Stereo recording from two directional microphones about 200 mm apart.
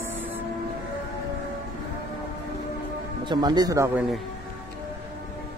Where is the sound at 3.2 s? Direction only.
20° right (ahead or behind).